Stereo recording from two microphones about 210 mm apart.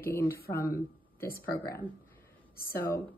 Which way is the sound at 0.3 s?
45° left (ahead or behind).